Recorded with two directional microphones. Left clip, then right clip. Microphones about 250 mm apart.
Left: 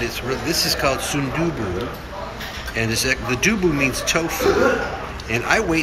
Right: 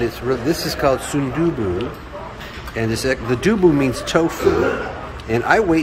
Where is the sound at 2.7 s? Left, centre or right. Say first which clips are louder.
Right 1 dB; centre.